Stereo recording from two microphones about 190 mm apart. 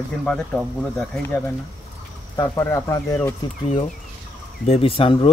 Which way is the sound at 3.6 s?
35° left (ahead or behind).